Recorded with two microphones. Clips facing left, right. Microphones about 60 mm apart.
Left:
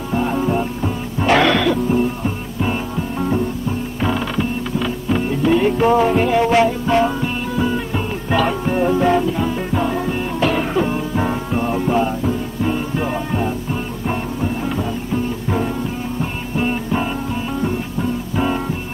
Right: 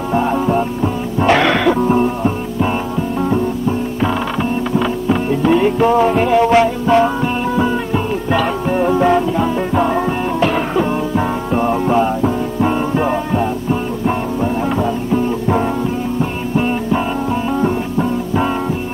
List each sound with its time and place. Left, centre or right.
0.1 s music: centre
4.0 s music: centre
10.4 s music: centre; by 12.7 s right
12.9 s music: centre
16.2 s music: centre
17.6 s music: centre